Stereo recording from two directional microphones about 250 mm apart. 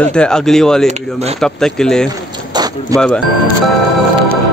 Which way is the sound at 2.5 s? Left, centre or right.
Centre.